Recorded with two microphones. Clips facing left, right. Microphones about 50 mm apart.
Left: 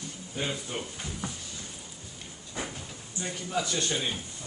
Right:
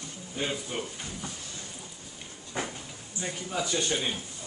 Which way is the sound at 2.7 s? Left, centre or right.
Centre.